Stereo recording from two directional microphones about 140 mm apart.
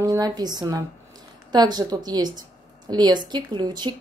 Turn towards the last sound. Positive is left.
turn(degrees=-30)  # may be behind; listen again after turning